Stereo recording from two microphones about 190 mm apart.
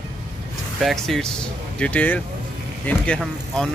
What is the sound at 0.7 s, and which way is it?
Speech, centre (ahead or behind).